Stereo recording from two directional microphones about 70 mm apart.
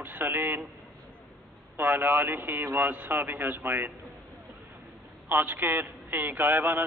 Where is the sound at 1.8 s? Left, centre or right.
Right.